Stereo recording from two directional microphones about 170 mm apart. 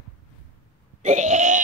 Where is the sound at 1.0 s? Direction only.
45° right (ahead or behind).